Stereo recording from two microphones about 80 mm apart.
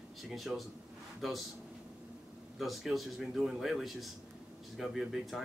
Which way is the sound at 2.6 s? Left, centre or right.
Centre.